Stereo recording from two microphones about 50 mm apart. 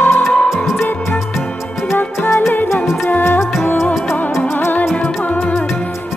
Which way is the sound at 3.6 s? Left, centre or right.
Left.